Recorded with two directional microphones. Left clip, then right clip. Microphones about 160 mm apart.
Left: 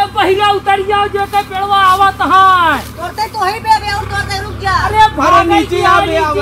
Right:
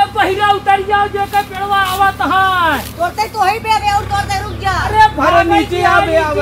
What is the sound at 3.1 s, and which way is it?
Speech, 15° right (ahead or behind).